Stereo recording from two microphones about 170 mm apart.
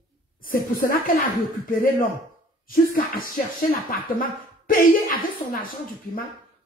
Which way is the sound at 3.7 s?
55° left (ahead or behind).